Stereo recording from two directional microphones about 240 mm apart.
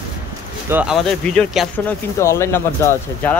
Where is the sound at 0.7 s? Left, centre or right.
Centre.